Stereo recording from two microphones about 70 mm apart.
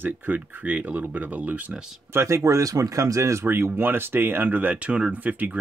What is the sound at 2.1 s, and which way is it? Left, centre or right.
Speech, right.